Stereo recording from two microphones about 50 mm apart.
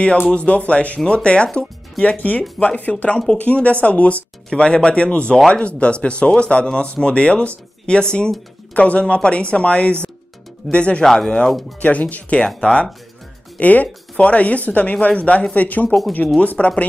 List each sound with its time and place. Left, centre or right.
0.3 s speech: left
2.0 s speech: left; by 11.6 s centre
11.8 s speech: left
13.6 s speech: left